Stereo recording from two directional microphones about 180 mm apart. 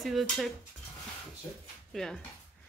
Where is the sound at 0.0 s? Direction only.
Centre (ahead or behind).